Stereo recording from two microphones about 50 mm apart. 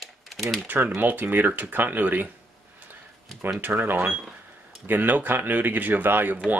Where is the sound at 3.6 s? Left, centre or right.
Right.